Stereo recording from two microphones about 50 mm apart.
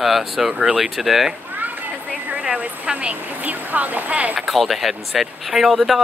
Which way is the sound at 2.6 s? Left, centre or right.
Right.